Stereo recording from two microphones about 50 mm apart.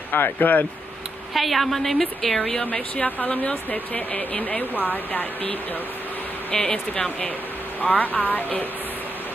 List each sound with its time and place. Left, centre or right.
0.1 s speech: left
1.3 s a woman's voice: centre
2.6 s speech: left
6.5 s speech: centre
7.8 s speech: left